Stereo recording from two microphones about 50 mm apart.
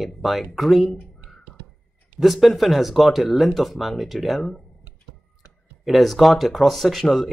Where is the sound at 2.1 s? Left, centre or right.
Centre.